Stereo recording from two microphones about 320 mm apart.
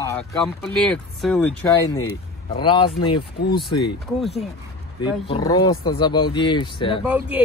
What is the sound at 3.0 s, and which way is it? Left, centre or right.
Speech, left.